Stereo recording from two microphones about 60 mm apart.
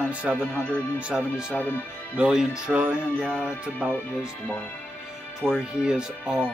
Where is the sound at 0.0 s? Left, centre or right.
Right.